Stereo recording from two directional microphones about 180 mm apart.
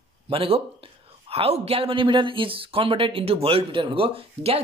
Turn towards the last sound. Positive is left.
turn(degrees=-35)  # may be behind; listen again after turning